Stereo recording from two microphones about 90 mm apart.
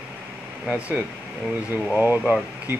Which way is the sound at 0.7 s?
15° right (ahead or behind).